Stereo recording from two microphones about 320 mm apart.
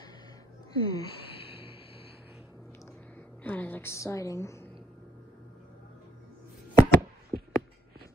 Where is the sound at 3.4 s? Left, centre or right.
Centre.